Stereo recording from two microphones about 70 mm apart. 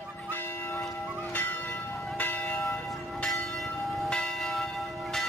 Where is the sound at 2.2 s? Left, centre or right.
Left.